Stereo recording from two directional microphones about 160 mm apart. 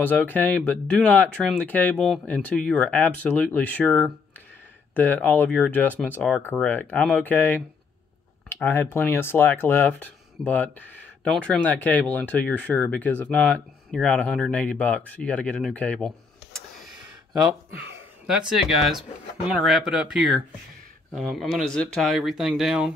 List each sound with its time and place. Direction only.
0.0 s speech: 10° left (ahead or behind)
17.3 s speech: 25° right (ahead or behind)
18.5 s speech: centre (ahead or behind)